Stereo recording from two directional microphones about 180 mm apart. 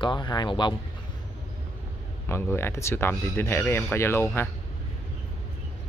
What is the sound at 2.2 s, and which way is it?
Speech, 15° left (ahead or behind).